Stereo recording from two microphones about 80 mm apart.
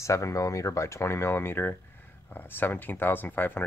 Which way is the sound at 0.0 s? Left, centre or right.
Left.